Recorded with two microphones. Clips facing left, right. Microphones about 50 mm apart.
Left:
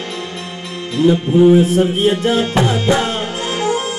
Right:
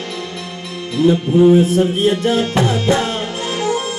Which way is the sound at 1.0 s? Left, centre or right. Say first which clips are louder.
Left 1 dB; left.